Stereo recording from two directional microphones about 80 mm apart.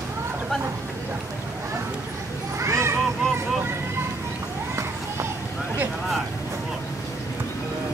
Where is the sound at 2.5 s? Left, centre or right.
Right.